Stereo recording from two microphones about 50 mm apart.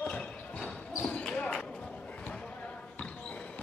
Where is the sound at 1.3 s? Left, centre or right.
Centre.